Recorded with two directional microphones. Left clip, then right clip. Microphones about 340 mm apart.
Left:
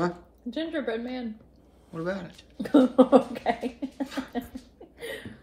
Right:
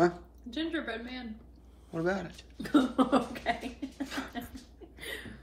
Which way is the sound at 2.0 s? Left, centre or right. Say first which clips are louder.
Even; centre.